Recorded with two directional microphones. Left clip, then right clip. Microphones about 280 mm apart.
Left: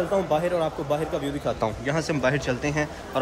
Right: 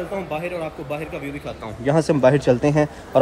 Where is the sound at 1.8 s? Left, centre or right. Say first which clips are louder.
Right 12 dB; centre.